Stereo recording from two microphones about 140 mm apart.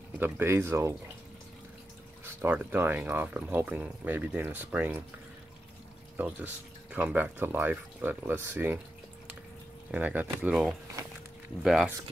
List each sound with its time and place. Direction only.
0.2 s speech: 15° right (ahead or behind)
2.2 s speech: 10° right (ahead or behind)
6.1 s speech: 10° right (ahead or behind)
9.8 s speech: 10° right (ahead or behind)
10.5 s speech: centre (ahead or behind)